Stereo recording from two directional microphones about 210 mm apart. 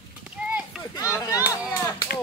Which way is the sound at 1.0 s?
15° left (ahead or behind).